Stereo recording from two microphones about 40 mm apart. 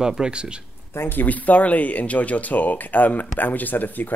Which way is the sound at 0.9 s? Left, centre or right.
Left.